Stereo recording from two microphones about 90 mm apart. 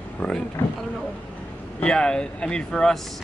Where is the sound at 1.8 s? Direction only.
10° left (ahead or behind).